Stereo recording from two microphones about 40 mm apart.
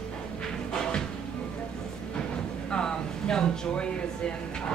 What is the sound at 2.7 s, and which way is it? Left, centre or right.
A man's voice, centre.